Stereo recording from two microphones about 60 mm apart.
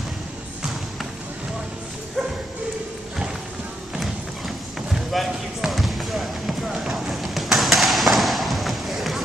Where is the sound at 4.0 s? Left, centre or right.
Centre.